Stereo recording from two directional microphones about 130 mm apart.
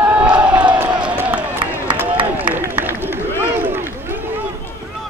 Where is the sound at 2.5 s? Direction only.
15° right (ahead or behind).